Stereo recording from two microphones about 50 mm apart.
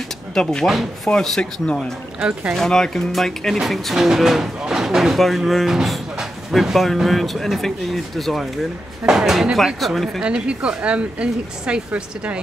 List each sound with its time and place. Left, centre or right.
0.3 s speech: centre
1.1 s speech: left
2.5 s speech: centre
4.6 s a sound: centre
5.2 s speech: centre
9.0 s speech: centre
10.2 s speech: right